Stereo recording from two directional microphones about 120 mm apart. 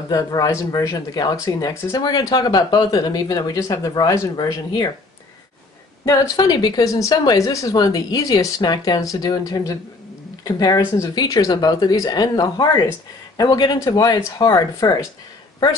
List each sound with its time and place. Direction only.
0.1 s speech: 30° left (ahead or behind)
6.3 s speech: 35° left (ahead or behind)